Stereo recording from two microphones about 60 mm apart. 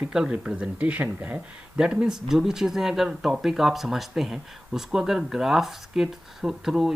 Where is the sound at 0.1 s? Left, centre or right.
Centre.